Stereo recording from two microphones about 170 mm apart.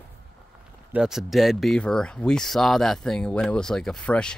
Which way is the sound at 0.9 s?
Centre (ahead or behind).